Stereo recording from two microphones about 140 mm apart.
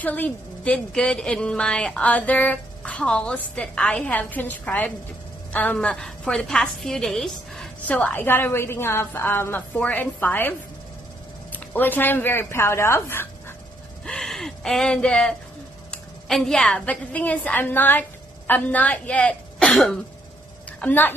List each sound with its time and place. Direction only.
0.0 s a woman's voice: 10° left (ahead or behind)
11.5 s a woman's voice: 15° left (ahead or behind)
14.0 s gasp: 5° left (ahead or behind)
15.9 s a woman's voice: 5° left (ahead or behind)
20.8 s a woman's voice: 15° left (ahead or behind)